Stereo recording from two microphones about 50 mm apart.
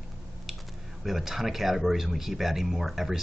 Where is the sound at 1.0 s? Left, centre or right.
Centre.